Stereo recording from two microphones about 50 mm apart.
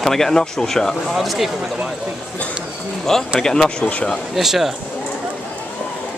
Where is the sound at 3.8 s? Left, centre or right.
Left.